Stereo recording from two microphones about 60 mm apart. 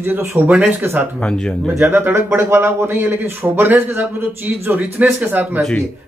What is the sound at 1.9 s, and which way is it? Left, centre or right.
Speech, right.